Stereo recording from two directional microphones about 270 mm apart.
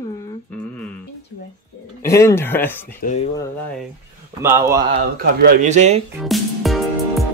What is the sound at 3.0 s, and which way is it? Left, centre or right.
Speech, left.